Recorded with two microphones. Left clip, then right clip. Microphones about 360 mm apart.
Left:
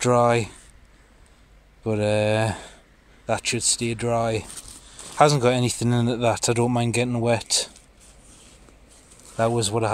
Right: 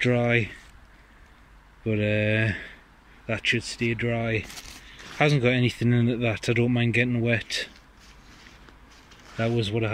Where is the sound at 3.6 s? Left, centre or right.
Centre.